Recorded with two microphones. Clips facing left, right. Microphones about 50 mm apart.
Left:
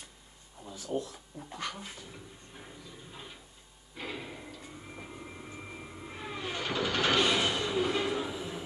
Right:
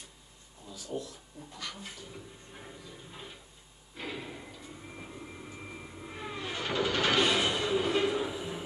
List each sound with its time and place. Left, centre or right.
0.7 s speech: left
2.1 s a sound: centre
6.5 s train: centre
7.2 s music: centre